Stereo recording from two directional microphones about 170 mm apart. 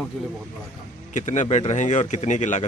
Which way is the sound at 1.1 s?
45° left (ahead or behind).